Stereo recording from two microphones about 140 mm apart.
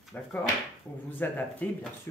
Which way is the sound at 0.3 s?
15° left (ahead or behind).